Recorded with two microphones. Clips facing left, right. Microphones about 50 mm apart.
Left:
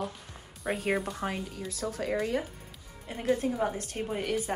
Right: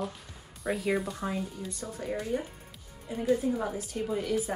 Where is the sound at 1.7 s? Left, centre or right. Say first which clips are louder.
Left 3 dB; left.